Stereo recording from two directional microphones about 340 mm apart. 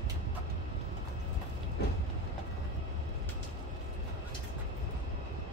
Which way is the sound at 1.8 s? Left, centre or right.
Left.